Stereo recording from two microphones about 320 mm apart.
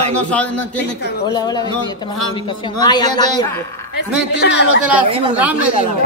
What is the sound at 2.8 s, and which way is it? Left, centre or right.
Speech, centre.